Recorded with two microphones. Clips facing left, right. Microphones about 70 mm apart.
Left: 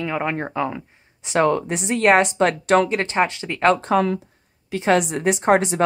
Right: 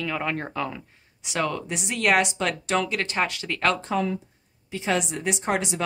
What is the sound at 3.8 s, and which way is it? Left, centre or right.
Speech, left.